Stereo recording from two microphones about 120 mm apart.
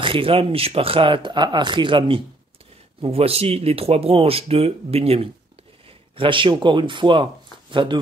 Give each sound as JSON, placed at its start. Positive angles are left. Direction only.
{"t": 0.0, "sound": "speech", "side_deg": -45}
{"t": 3.0, "sound": "speech", "side_deg": -55}
{"t": 6.1, "sound": "speech", "side_deg": -45}